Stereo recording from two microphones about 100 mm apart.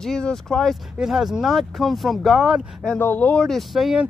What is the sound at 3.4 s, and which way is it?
Speech, centre (ahead or behind).